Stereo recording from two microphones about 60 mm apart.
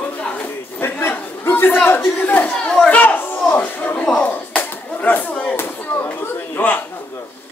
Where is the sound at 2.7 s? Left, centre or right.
Left.